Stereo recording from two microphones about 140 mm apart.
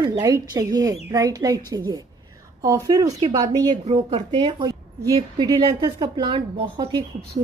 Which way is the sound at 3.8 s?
45° right (ahead or behind).